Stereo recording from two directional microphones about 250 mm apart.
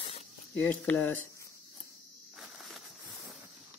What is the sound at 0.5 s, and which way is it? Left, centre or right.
Speech, centre.